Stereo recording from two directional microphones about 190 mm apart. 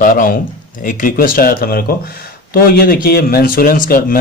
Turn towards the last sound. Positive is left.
turn(degrees=50)  # may be behind; listen again after turning